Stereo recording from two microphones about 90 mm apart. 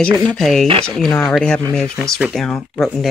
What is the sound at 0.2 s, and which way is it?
Speech, 5° left (ahead or behind).